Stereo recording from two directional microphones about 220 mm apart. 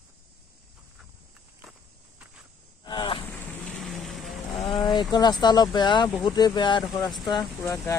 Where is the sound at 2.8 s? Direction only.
25° left (ahead or behind).